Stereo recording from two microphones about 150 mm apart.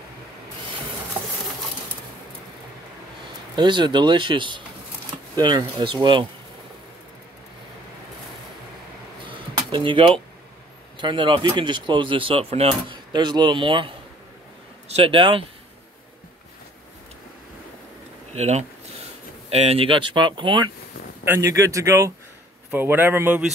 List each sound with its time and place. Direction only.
3.5 s a man's voice: 30° right (ahead or behind)
9.2 s a sound: 35° right (ahead or behind)
11.0 s speech: 35° right (ahead or behind)
18.3 s speech: 50° right (ahead or behind); by 20.7 s 30° right (ahead or behind)
21.2 s a man's voice: 15° right (ahead or behind)